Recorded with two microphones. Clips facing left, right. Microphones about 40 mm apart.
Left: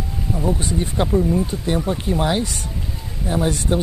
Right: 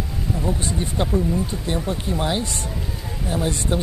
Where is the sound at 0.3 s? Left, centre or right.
Centre.